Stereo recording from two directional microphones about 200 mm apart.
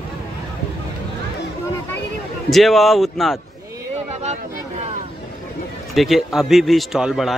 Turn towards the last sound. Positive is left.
turn(degrees=0)  # may be behind; listen again after turning